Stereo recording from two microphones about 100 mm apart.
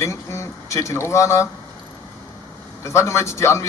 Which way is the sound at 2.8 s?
30° left (ahead or behind).